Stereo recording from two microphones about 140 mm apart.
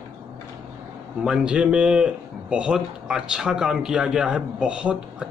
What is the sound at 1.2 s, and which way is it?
A man's voice, 5° right (ahead or behind).